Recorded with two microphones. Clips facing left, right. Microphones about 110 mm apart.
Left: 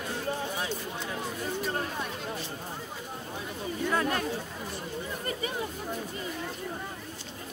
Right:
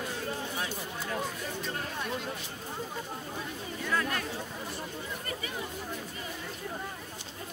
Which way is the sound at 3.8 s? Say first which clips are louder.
Left 3 dB; 25° left (ahead or behind).